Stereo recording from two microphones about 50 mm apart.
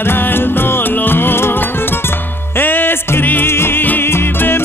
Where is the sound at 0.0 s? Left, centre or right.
Left.